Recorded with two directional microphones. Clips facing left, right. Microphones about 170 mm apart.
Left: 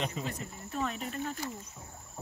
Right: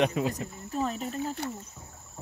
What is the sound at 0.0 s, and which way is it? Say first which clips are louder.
Speech: right 10 dB; 70° right (ahead or behind).